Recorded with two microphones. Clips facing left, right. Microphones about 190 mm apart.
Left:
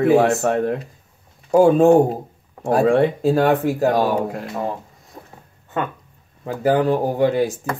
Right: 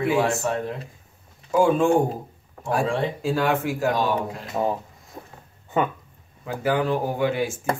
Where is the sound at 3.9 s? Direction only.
55° left (ahead or behind).